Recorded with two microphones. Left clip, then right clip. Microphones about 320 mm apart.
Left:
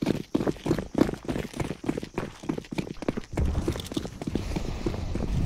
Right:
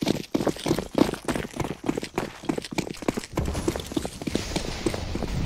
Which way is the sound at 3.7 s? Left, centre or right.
Centre.